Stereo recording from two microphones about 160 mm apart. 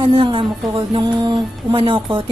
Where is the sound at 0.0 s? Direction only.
35° right (ahead or behind).